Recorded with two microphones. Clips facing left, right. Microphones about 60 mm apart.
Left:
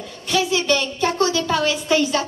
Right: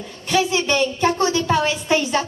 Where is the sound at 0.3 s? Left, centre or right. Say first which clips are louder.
Even; right.